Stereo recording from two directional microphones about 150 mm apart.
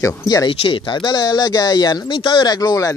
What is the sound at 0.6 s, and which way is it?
Speech, 35° left (ahead or behind).